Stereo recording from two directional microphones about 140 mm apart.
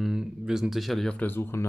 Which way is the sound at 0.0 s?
5° right (ahead or behind).